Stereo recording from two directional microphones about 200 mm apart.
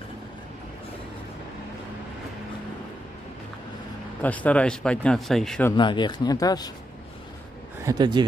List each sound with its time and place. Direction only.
4.2 s speech: 5° left (ahead or behind)
5.7 s speech: 20° left (ahead or behind)
7.8 s speech: 20° right (ahead or behind)